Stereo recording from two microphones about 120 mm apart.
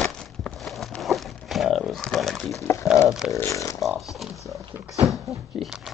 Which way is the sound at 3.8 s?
Centre (ahead or behind).